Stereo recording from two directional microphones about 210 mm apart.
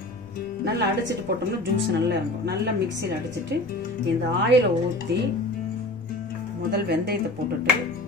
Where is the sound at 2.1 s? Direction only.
50° right (ahead or behind).